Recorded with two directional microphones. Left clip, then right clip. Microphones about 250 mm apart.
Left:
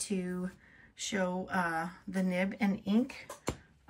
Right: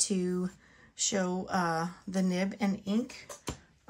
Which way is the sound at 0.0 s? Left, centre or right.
Centre.